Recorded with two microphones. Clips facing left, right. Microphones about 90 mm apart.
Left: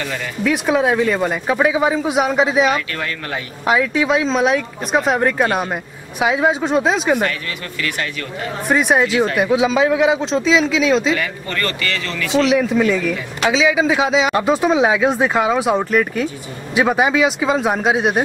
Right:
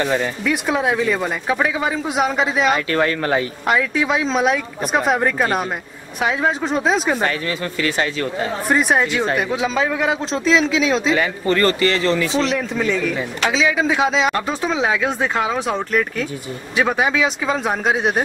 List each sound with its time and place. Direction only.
0.0 s speech: 30° right (ahead or behind)
0.4 s speech: centre (ahead or behind)
2.7 s speech: 35° right (ahead or behind)
3.6 s speech: centre (ahead or behind)
7.8 s speech: 30° right (ahead or behind)
8.6 s speech: centre (ahead or behind)
11.1 s speech: 30° right (ahead or behind)
12.4 s speech: 5° left (ahead or behind)